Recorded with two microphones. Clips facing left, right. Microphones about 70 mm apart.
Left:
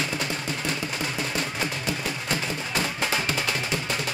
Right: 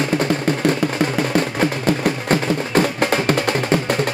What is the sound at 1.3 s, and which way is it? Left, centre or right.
Music, right.